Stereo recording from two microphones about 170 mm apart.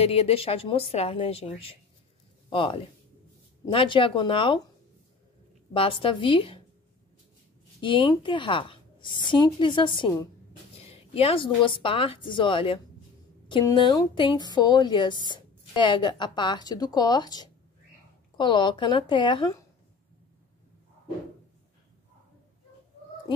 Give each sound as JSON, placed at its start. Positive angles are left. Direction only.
{"t": 0.0, "sound": "speech", "side_deg": 35}
{"t": 2.5, "sound": "speech", "side_deg": 30}
{"t": 5.7, "sound": "speech", "side_deg": 30}
{"t": 7.8, "sound": "speech", "side_deg": 30}